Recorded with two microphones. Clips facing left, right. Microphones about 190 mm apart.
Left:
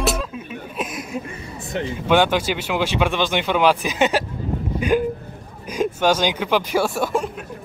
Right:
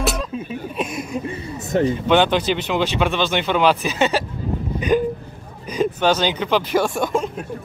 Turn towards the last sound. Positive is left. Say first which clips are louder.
# right 1 dB
turn(degrees=5)  # may be behind; listen again after turning